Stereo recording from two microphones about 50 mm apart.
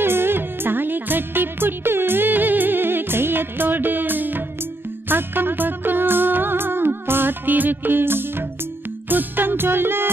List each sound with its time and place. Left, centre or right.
0.0 s music: right